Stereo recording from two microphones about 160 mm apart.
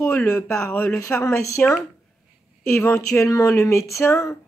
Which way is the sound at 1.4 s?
20° left (ahead or behind).